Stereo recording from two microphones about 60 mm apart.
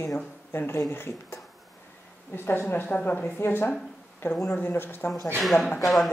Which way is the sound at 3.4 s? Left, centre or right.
Left.